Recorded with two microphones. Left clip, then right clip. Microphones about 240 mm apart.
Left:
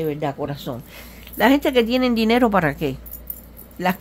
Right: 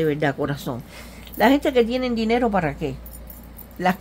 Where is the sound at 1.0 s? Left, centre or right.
Centre.